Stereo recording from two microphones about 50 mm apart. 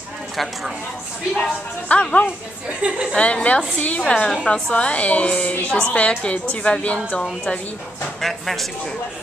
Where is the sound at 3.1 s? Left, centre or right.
Left.